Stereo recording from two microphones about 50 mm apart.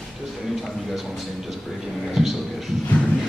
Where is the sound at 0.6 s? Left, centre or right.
Centre.